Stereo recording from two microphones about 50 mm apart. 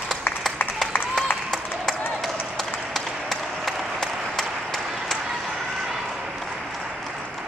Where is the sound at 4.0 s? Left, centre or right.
Centre.